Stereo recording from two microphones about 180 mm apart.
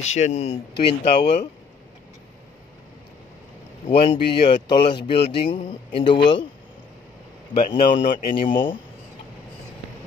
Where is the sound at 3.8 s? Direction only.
30° left (ahead or behind).